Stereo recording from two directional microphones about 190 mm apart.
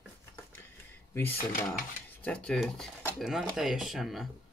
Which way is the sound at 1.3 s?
45° left (ahead or behind).